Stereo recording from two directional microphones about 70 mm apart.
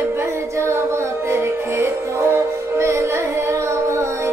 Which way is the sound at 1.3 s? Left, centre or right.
Right.